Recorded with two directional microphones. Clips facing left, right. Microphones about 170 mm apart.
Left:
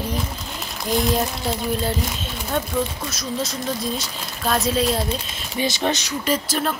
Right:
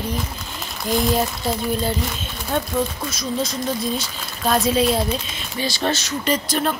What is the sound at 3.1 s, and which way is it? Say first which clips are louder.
Speech: right 2 dB; centre (ahead or behind).